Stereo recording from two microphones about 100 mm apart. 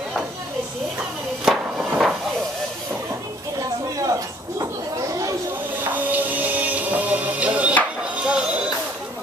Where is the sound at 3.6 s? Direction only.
35° right (ahead or behind).